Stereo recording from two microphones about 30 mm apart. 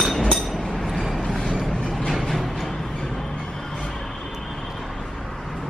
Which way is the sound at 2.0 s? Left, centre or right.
Centre.